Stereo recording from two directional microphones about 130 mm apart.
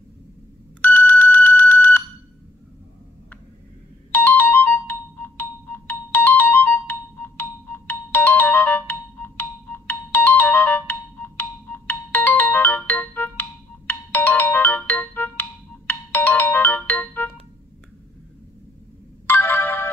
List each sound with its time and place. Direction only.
0.7 s a sound: 15° left (ahead or behind)
4.1 s ringtone: 15° left (ahead or behind)
19.2 s ringtone: 15° left (ahead or behind)